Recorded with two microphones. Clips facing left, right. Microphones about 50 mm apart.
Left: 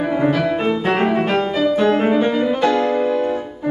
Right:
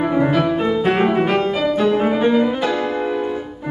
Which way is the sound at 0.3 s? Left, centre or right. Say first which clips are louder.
Even; centre.